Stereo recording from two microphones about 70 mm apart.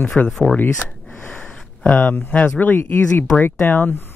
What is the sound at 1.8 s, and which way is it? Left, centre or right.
Speech, left.